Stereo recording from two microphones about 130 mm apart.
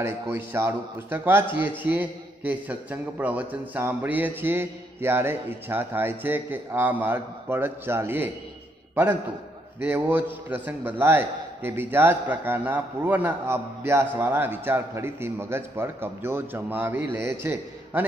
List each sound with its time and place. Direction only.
0.0 s a man's voice: 20° right (ahead or behind)
9.8 s a man's voice: 15° right (ahead or behind)